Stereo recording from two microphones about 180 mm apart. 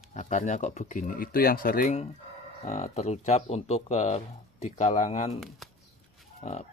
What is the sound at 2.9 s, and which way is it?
Speech, 35° left (ahead or behind).